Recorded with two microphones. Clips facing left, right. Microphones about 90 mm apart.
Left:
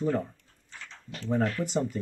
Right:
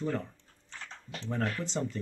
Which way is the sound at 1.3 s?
10° left (ahead or behind).